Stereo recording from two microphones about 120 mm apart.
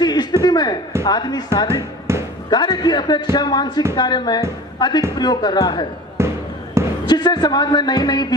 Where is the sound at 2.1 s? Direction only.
25° right (ahead or behind).